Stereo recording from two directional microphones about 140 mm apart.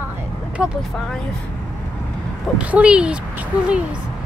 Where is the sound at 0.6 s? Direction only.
5° right (ahead or behind).